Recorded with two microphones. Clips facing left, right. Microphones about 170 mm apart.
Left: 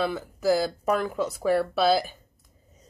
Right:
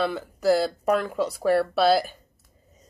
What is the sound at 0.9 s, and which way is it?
A woman's voice, 5° left (ahead or behind).